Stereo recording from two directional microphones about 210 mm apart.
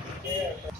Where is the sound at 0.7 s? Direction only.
Centre (ahead or behind).